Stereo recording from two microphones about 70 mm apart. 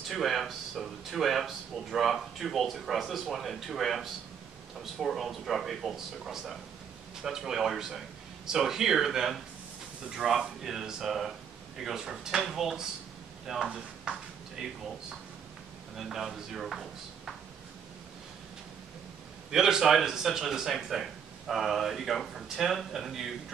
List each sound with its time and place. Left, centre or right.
0.1 s speech: centre
14.1 s speech: centre
16.0 s speech: centre
19.5 s speech: centre